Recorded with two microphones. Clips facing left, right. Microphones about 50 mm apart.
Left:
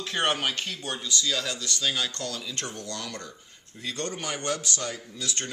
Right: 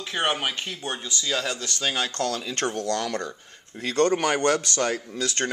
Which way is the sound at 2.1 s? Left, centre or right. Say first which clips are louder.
Right 7 dB; right.